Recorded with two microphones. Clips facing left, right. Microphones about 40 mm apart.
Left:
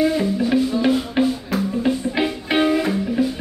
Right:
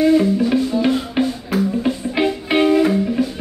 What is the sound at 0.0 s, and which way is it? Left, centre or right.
Music, centre.